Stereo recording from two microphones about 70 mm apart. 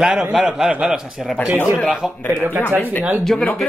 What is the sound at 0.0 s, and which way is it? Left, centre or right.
A man's voice, centre.